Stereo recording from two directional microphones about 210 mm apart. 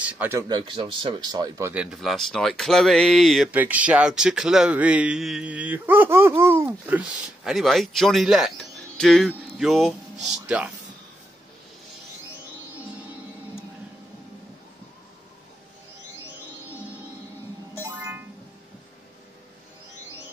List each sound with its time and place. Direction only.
0.0 s speech: 10° right (ahead or behind)
1.7 s speech: 5° right (ahead or behind)
17.7 s music: 10° right (ahead or behind)